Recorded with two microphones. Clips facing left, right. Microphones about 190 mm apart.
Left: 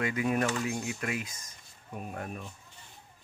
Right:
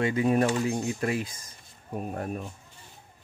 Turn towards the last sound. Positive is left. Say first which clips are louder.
# right 6 dB
turn(degrees=-35)  # may be behind; listen again after turning